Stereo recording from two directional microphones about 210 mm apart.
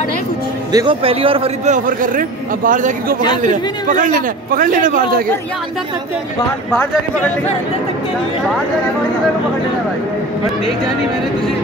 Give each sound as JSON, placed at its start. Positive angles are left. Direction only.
{"t": 0.7, "sound": "a man's voice", "side_deg": -25}
{"t": 1.9, "sound": "speech", "side_deg": -40}
{"t": 6.7, "sound": "speech", "side_deg": 5}